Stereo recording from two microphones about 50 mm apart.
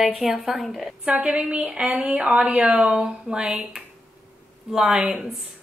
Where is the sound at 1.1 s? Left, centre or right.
Right; by 3.7 s centre.